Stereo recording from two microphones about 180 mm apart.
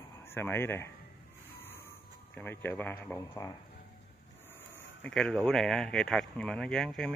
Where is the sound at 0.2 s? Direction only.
10° left (ahead or behind).